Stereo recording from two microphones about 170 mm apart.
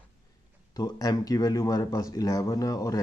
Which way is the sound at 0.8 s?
20° left (ahead or behind).